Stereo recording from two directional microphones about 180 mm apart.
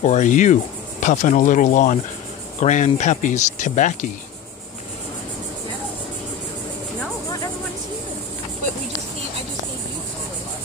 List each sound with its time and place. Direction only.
0.0 s speech: 45° left (ahead or behind)